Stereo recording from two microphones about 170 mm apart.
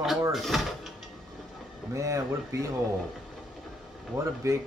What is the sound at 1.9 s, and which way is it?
Speech, 15° right (ahead or behind).